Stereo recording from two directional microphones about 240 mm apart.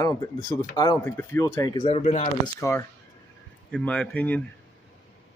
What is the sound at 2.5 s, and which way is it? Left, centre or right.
Speech, centre.